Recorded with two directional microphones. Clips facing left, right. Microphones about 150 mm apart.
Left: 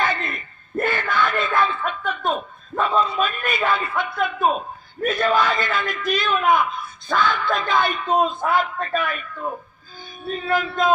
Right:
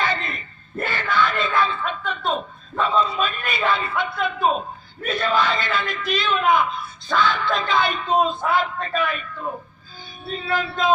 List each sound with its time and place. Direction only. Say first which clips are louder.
0.0 s a sound: left 1 dB; 50° left (ahead or behind)
8.5 s a woman's voice: left 1 dB; 50° left (ahead or behind)
10.2 s a man's voice: left 3 dB; 45° left (ahead or behind)